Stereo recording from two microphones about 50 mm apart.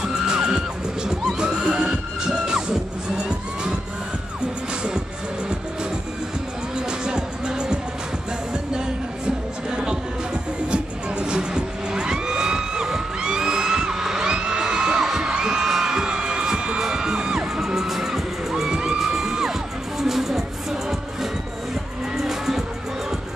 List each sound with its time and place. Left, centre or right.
0.0 s music: centre
6.9 s music: centre
10.7 s vehicle: centre
20.0 s music: centre
22.1 s music: centre